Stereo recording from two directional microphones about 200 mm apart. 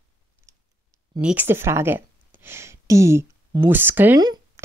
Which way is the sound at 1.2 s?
10° right (ahead or behind).